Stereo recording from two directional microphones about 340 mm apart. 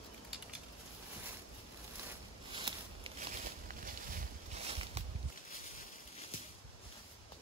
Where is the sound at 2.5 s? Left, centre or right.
Centre.